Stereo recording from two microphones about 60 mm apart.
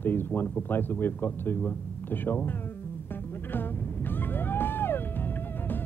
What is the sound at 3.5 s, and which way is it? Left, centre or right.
Vehicle, left.